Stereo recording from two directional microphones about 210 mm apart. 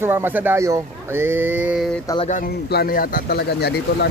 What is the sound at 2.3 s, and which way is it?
Speech, 45° left (ahead or behind).